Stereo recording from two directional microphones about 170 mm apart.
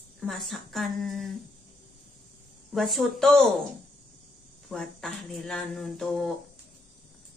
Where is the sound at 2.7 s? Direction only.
Centre (ahead or behind).